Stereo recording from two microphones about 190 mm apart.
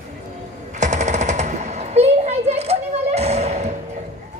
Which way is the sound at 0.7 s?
40° right (ahead or behind).